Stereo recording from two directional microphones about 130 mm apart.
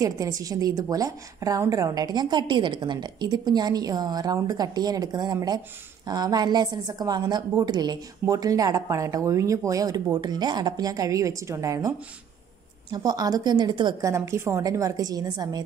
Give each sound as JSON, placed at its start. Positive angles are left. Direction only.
{"t": 0.0, "sound": "a woman's voice", "side_deg": -25}
{"t": 12.9, "sound": "a woman's voice", "side_deg": -30}
{"t": 14.0, "sound": "a woman's voice", "side_deg": -20}